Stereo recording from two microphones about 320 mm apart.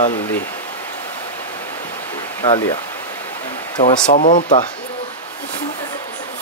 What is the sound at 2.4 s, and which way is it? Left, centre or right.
Speech, centre.